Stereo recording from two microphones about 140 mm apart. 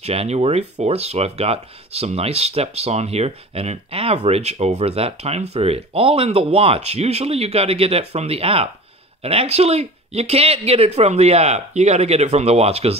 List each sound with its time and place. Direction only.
0.0 s speech: 45° right (ahead or behind)